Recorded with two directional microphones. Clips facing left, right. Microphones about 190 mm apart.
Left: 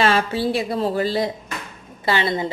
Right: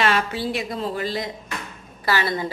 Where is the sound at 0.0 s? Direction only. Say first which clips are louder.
Left 3 dB; 30° left (ahead or behind).